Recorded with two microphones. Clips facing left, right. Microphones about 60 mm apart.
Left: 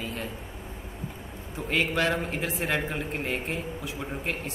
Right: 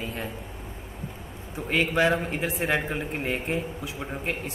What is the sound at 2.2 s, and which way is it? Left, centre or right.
A man's voice, centre.